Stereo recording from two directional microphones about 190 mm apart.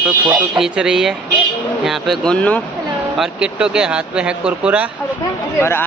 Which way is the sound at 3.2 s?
5° right (ahead or behind).